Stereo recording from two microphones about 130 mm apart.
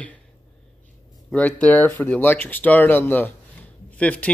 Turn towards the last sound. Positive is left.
turn(degrees=10)  # may be behind; listen again after turning